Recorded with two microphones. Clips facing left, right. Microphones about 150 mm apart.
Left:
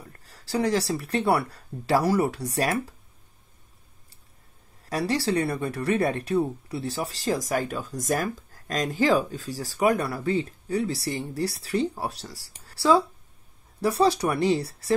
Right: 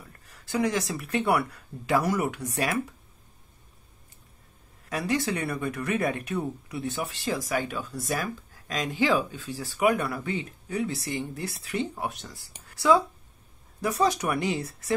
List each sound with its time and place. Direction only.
0.2 s speech: 35° left (ahead or behind)
4.8 s speech: 35° left (ahead or behind)